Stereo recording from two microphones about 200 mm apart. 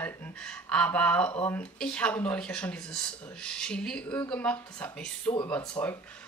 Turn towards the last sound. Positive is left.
turn(degrees=5)  # may be behind; listen again after turning